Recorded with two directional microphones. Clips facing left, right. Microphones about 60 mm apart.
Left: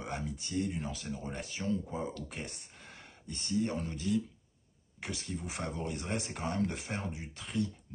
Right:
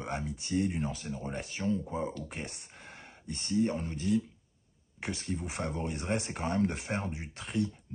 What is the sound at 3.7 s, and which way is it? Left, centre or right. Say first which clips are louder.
Speech: right 2 dB; right.